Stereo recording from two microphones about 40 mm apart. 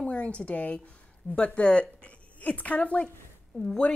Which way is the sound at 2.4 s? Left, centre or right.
Left.